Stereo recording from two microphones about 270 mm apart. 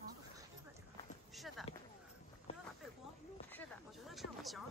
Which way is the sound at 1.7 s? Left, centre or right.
Left.